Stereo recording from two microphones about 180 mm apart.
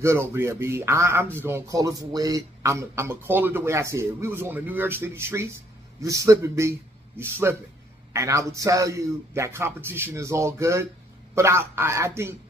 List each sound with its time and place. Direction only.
0.0 s a man's voice: 15° right (ahead or behind)